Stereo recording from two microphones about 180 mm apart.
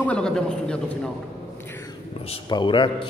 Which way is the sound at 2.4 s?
25° left (ahead or behind).